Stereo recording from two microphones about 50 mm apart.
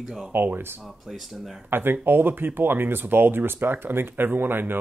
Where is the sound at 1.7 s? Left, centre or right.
Right.